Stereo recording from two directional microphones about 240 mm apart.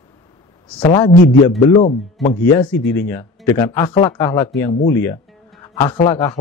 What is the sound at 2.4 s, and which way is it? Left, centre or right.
Speech, centre.